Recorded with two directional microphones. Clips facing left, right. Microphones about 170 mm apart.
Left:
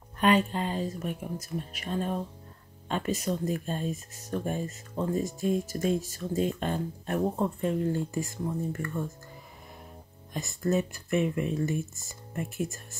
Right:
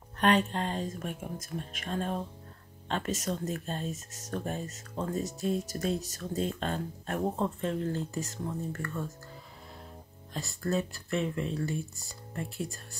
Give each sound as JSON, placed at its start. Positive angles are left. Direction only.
{"t": 0.2, "sound": "speech", "side_deg": 10}
{"t": 0.8, "sound": "speech", "side_deg": -45}
{"t": 1.9, "sound": "speech", "side_deg": 5}
{"t": 3.0, "sound": "speech", "side_deg": -45}
{"t": 3.3, "sound": "speech", "side_deg": 15}
{"t": 3.9, "sound": "speech", "side_deg": -45}
{"t": 4.3, "sound": "speech", "side_deg": 15}
{"t": 5.1, "sound": "speech", "side_deg": -40}
{"t": 6.3, "sound": "speech", "side_deg": 15}
{"t": 10.3, "sound": "speech", "side_deg": 20}